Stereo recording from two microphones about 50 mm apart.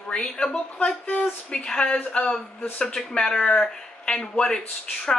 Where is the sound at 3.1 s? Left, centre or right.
Centre.